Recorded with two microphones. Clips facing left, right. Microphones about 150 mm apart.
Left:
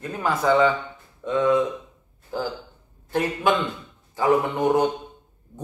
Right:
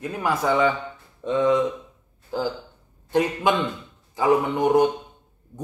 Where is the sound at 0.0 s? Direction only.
10° right (ahead or behind).